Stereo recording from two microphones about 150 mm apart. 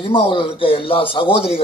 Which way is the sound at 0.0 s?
35° left (ahead or behind).